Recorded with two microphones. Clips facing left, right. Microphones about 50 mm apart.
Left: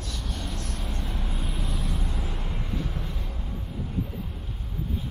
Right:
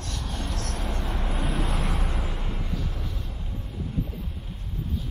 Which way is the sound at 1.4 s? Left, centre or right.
Right.